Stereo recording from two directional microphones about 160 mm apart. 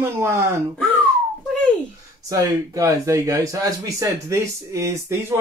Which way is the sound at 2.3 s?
20° right (ahead or behind).